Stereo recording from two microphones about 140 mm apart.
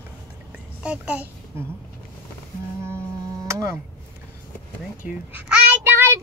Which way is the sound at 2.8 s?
20° right (ahead or behind).